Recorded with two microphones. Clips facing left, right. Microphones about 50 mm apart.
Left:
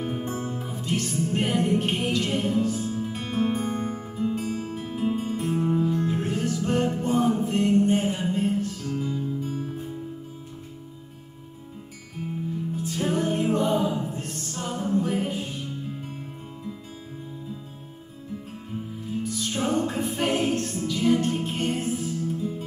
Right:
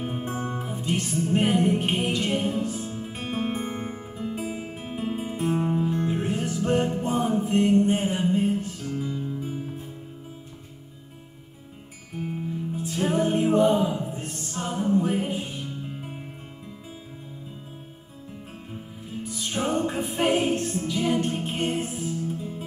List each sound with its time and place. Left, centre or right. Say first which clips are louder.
0.0 s music: left 1 dB; centre
12.7 s music: right 2 dB; centre
19.2 s music: even; centre